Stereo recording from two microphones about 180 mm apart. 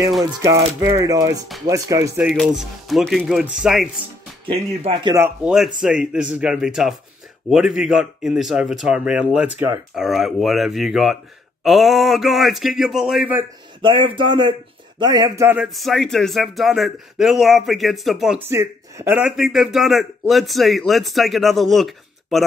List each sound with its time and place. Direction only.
0.2 s music: 15° right (ahead or behind)
1.7 s speech: 20° right (ahead or behind)
2.2 s speech: centre (ahead or behind)
4.5 s music: 30° right (ahead or behind)
5.1 s speech: 10° right (ahead or behind)
13.7 s music: 30° right (ahead or behind)
15.0 s speech: 25° right (ahead or behind); by 18.4 s centre (ahead or behind)
18.5 s speech: 15° right (ahead or behind)
19.1 s speech: centre (ahead or behind)